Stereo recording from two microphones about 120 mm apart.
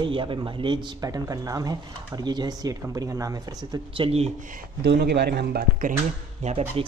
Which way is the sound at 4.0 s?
60° right (ahead or behind).